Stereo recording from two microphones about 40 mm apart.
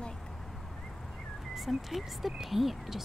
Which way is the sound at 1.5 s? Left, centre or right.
Centre.